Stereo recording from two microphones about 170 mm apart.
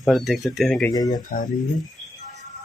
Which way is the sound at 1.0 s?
50° left (ahead or behind).